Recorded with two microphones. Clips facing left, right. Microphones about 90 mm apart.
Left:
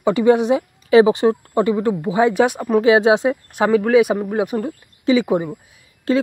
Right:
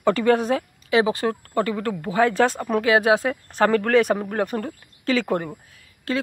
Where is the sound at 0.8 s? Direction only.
30° left (ahead or behind); by 5.8 s 10° left (ahead or behind).